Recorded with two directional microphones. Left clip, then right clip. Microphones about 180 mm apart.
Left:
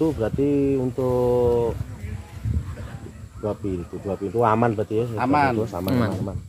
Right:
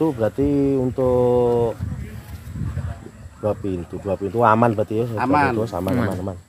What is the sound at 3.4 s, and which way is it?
Speech, 70° right (ahead or behind).